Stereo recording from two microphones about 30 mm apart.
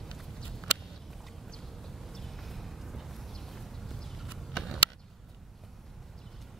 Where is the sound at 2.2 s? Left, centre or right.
Centre.